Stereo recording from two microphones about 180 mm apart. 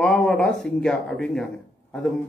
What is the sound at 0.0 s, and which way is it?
Speech, 5° left (ahead or behind).